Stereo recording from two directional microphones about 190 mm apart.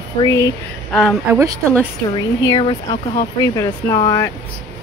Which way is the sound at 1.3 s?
15° right (ahead or behind).